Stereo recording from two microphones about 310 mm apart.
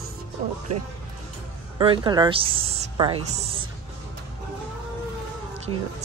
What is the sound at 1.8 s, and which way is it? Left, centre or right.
A woman's voice, centre.